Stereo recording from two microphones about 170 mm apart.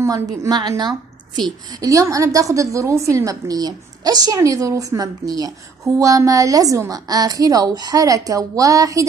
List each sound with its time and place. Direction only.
0.0 s a woman's voice: 20° right (ahead or behind)